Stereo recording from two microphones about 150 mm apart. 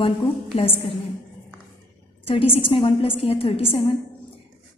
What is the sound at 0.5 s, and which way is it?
Speech, 45° left (ahead or behind).